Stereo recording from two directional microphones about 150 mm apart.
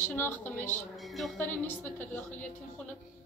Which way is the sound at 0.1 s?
15° left (ahead or behind).